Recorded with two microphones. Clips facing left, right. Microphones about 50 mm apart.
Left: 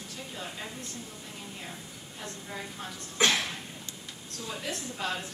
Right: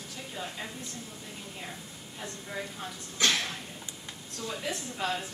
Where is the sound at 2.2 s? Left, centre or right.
Centre.